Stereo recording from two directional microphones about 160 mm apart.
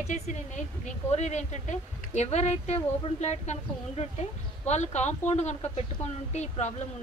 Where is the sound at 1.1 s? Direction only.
45° left (ahead or behind).